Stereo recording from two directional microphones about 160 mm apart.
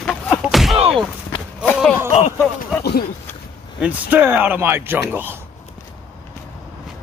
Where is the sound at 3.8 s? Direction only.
10° right (ahead or behind).